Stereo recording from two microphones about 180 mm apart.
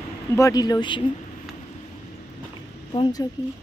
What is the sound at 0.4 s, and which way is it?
Speech, 20° left (ahead or behind).